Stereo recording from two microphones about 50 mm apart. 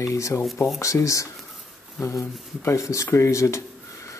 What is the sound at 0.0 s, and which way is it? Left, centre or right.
Speech, left.